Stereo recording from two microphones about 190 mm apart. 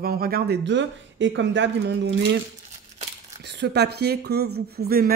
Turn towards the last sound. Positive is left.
turn(degrees=-50)  # may be behind; listen again after turning